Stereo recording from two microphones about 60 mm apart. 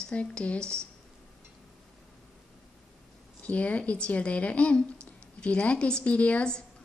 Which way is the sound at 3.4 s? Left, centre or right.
Left.